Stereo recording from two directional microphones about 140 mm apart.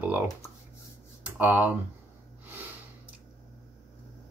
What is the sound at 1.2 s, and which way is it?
Speech, 10° right (ahead or behind).